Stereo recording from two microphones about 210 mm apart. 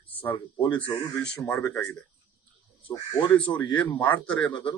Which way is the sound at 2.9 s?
25° left (ahead or behind).